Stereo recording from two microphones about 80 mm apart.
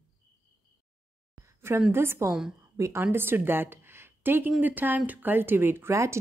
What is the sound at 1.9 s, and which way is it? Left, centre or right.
A woman's voice, right.